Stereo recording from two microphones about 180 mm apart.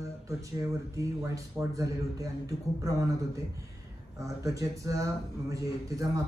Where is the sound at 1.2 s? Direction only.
20° right (ahead or behind).